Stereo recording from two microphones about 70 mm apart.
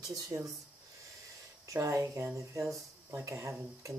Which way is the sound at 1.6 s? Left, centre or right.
Right.